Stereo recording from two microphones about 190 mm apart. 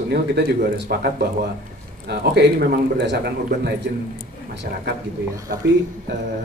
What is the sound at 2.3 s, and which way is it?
Speech, 60° right (ahead or behind).